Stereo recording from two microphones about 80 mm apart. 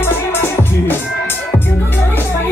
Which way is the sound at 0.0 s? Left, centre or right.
Left.